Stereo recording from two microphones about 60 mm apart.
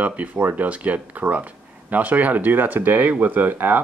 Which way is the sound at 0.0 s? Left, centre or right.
Right.